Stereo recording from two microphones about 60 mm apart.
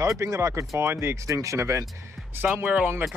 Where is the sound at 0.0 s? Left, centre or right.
Right.